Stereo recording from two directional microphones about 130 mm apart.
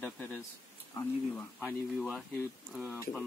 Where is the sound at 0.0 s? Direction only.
10° left (ahead or behind).